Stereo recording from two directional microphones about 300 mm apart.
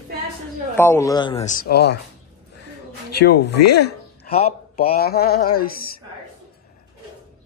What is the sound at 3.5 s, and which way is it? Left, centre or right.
Speech, left.